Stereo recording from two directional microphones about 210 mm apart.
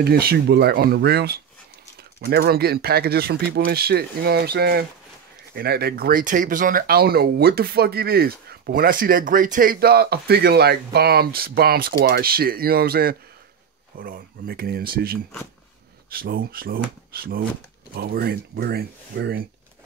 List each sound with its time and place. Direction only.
0.0 s speech: 50° right (ahead or behind)